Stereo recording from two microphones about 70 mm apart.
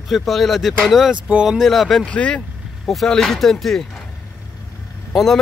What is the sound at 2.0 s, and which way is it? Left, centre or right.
Speech, centre.